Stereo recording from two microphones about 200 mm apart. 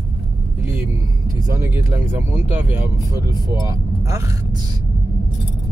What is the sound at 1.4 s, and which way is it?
Speech, 15° right (ahead or behind).